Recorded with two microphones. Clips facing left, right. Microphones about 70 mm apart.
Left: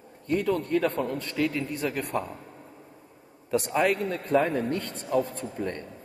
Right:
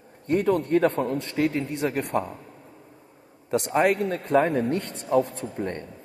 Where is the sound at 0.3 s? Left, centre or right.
Right.